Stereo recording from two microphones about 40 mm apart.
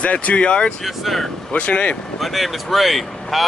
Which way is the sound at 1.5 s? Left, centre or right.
Left.